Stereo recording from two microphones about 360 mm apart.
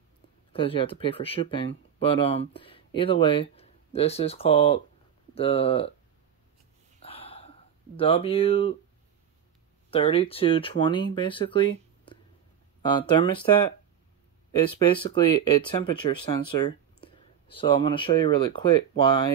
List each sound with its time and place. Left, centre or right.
0.5 s speech: centre
7.0 s a sound: centre
9.8 s speech: centre
14.7 s speech: centre